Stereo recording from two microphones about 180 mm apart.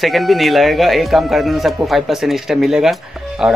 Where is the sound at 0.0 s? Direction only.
Centre (ahead or behind).